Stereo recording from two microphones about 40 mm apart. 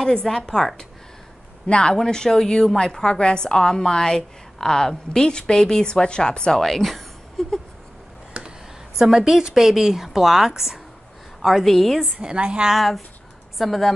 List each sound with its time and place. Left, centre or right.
0.0 s a woman's voice: centre
6.6 s a sound: centre
8.3 s a sound: right
8.9 s a woman's voice: centre
12.0 s a woman's voice: right
12.7 s a woman's voice: centre